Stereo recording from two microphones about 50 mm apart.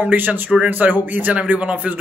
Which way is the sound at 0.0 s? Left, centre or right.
Right.